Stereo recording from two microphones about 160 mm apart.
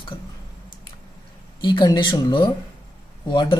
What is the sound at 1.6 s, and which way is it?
Speech, 25° left (ahead or behind).